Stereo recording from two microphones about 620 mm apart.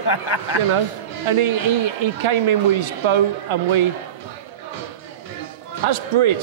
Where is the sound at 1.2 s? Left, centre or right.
Right.